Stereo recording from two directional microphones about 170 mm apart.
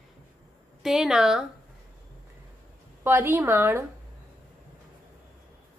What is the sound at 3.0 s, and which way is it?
Speech, 10° right (ahead or behind).